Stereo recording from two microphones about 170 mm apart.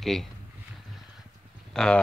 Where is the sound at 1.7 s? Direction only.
5° left (ahead or behind).